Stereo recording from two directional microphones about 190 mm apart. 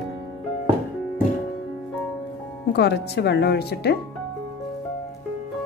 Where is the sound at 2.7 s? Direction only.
60° left (ahead or behind).